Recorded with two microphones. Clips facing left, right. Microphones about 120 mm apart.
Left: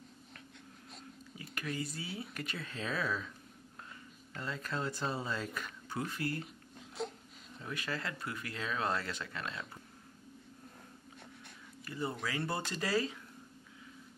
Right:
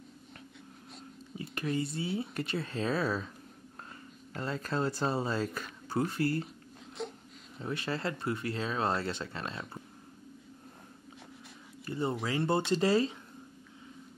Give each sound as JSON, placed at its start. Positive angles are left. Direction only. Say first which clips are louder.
{"t": 1.4, "sound": "speech", "louder": "right 6 dB", "side_deg": -30}
{"t": 4.3, "sound": "speech", "louder": "right 5 dB", "side_deg": -40}
{"t": 7.0, "sound": "crying", "louder": "even", "side_deg": 0}
{"t": 7.6, "sound": "speech", "louder": "right 6 dB", "side_deg": -30}
{"t": 11.8, "sound": "speech", "louder": "right 5 dB", "side_deg": -25}